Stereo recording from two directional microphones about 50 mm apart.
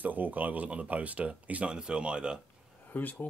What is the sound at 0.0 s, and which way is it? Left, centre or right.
Speech, right.